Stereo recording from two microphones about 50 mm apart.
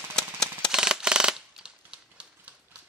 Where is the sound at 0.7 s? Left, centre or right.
Centre.